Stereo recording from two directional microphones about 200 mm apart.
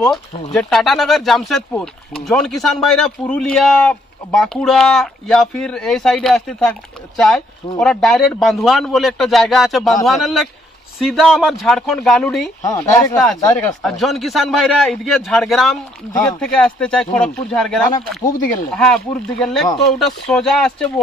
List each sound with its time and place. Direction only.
0.0 s a man's voice: centre (ahead or behind)
12.6 s speech: 15° left (ahead or behind)
13.8 s a man's voice: centre (ahead or behind)
19.4 s a man's voice: centre (ahead or behind)